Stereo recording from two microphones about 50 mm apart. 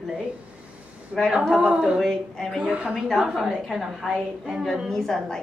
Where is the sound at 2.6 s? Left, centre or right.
Right.